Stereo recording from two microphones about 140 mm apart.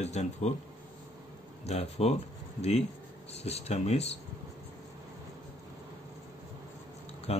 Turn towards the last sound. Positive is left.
turn(degrees=45)  # may be behind; listen again after turning